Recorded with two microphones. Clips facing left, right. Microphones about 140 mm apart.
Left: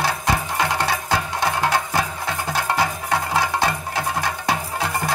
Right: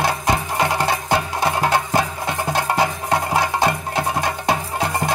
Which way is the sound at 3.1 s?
20° right (ahead or behind).